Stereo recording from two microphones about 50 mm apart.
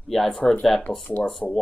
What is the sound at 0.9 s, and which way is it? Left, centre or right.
Speech, left.